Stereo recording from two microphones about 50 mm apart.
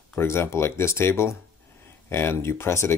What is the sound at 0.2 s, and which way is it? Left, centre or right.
Speech, left.